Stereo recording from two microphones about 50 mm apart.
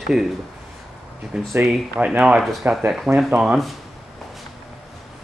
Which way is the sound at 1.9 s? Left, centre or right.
Right.